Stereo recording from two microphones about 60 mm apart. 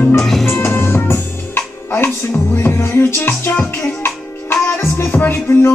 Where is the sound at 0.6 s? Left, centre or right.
Left.